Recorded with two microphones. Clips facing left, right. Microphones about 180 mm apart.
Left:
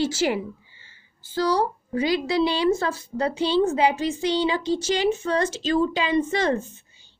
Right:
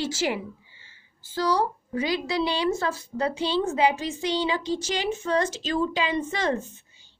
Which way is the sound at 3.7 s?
35° left (ahead or behind).